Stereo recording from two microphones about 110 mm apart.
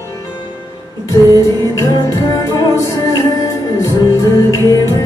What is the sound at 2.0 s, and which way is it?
Music, 30° left (ahead or behind).